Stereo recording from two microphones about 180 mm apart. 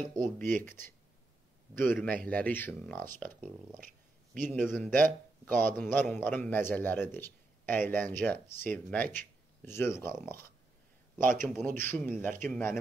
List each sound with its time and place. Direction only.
0.2 s speech: 45° right (ahead or behind)
0.7 s a man's voice: 15° left (ahead or behind)
2.0 s a man's voice: 5° left (ahead or behind)
4.6 s a man's voice: 10° left (ahead or behind)
11.2 s speech: 50° right (ahead or behind)
11.6 s a man's voice: 10° left (ahead or behind)